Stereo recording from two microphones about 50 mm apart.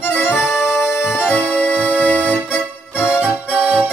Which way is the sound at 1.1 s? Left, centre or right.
Left.